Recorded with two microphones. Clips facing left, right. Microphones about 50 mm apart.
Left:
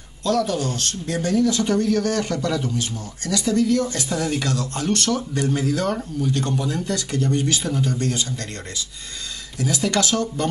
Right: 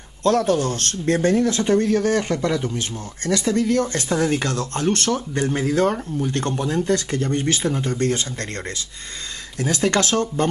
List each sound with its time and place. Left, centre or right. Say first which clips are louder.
0.2 s speech: right 3 dB; right
6.9 s speech: right 2 dB; right
9.6 s speech: right 2 dB; right